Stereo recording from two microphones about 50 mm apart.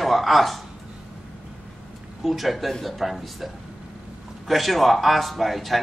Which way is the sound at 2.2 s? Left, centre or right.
Centre.